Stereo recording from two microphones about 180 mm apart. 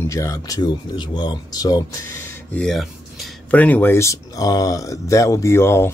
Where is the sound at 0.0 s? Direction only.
15° left (ahead or behind).